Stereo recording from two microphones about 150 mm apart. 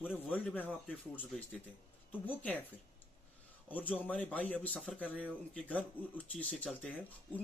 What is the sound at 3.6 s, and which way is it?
Speech, 10° left (ahead or behind).